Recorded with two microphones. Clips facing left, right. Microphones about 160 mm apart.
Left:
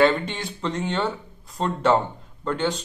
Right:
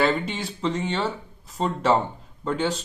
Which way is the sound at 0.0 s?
Centre (ahead or behind).